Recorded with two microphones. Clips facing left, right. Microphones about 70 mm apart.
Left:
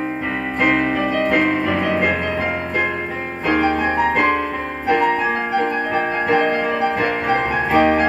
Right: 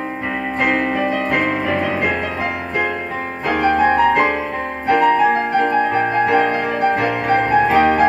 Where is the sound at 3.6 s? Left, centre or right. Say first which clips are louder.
Right 9 dB; right.